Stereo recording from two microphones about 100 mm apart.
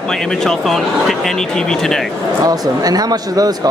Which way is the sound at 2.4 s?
40° right (ahead or behind).